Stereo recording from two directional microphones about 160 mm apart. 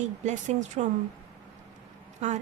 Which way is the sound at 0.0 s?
50° right (ahead or behind).